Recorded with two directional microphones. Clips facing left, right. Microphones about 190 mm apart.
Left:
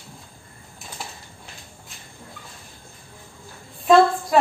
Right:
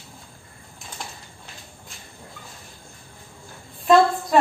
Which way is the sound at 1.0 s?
5° left (ahead or behind).